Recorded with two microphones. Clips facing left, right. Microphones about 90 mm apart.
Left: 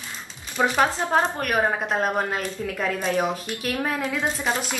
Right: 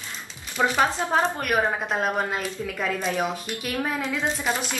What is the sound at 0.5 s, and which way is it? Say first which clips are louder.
A woman's voice: left 1 dB; centre (ahead or behind).